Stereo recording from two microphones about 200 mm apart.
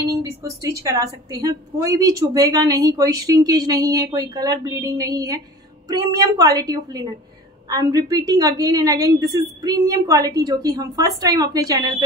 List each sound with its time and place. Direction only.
0.1 s a woman's voice: 15° right (ahead or behind)